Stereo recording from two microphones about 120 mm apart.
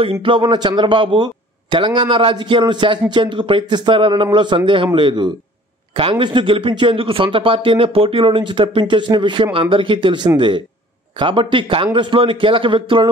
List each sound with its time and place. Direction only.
0.0 s speech: 50° right (ahead or behind)